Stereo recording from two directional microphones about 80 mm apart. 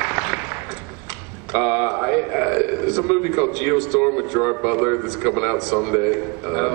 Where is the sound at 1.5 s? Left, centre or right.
Centre.